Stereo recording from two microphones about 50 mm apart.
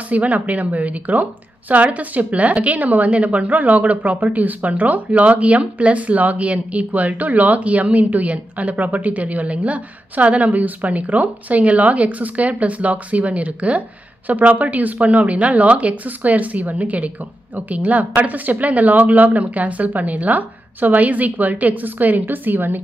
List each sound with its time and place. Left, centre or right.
0.1 s a woman's voice: right